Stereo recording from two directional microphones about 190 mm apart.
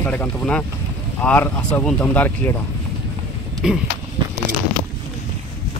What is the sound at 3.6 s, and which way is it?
Speech, 5° right (ahead or behind).